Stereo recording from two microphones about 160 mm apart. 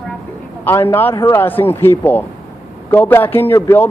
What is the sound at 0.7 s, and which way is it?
Speech, 15° left (ahead or behind).